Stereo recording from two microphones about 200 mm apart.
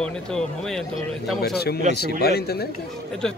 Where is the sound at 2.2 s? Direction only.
50° left (ahead or behind).